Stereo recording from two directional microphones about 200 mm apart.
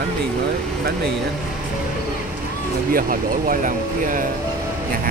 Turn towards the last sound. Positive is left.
turn(degrees=-40)  # may be behind; listen again after turning